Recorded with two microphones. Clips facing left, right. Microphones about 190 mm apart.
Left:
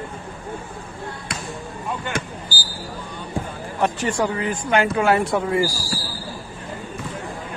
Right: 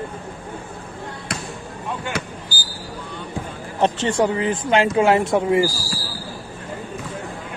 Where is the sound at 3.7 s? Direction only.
25° right (ahead or behind).